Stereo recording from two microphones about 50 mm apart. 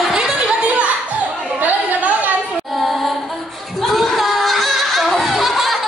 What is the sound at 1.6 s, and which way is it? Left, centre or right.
Chatter, right.